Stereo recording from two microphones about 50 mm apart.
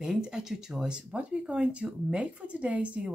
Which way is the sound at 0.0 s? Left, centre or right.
Centre.